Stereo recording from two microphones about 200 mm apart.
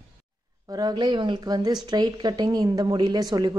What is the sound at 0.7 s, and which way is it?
A woman's voice, 20° right (ahead or behind).